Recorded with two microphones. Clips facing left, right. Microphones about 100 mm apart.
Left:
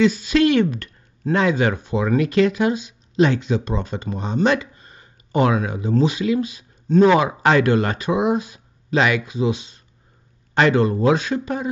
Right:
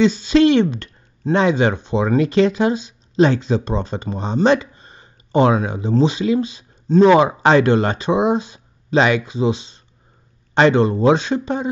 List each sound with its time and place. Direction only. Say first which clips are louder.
0.0 s speech: right 3 dB; 30° right (ahead or behind)